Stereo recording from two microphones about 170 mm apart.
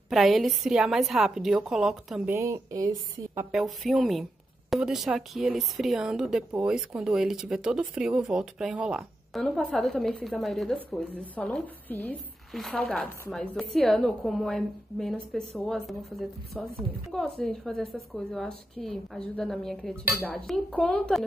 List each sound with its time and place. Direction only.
0.1 s a woman's voice: centre (ahead or behind)
2.3 s speech: 15° right (ahead or behind)
3.5 s a woman's voice: centre (ahead or behind)